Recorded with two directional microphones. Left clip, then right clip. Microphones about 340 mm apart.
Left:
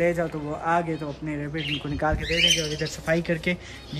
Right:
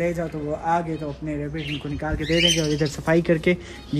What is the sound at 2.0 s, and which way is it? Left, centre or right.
Speech, centre.